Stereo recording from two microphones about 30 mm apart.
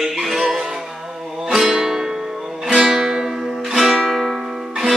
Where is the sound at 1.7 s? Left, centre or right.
Centre.